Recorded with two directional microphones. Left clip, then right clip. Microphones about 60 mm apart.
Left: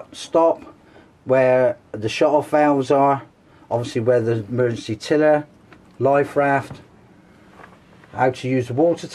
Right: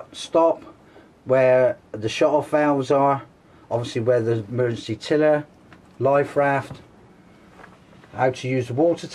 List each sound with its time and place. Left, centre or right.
0.1 s speech: left
8.2 s speech: left